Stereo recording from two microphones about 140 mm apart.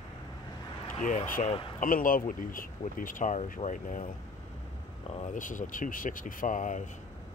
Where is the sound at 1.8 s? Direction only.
80° left.